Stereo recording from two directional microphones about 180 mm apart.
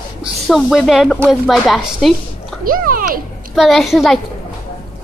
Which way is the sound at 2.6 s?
50° right (ahead or behind).